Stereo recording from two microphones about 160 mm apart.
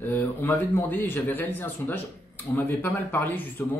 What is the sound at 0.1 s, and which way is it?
Speech, 10° left (ahead or behind).